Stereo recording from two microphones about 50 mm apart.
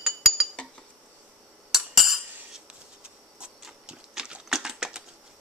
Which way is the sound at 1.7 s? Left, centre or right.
Centre.